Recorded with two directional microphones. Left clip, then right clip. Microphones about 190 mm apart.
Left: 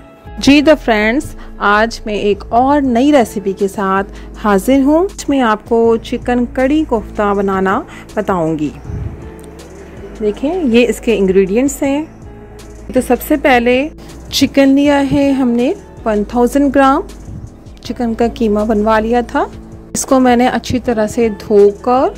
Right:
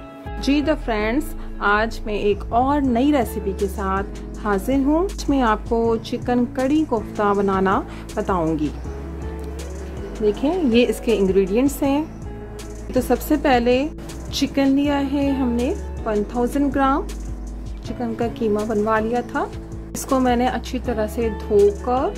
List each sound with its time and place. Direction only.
0.4 s speech: 40° left (ahead or behind)
5.2 s a woman's voice: 25° left (ahead or behind)
10.2 s a woman's voice: 15° left (ahead or behind)
14.3 s a woman's voice: 45° left (ahead or behind)